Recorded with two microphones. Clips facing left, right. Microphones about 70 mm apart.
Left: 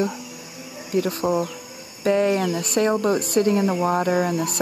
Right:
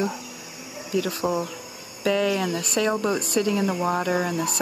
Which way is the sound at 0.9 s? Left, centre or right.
Left.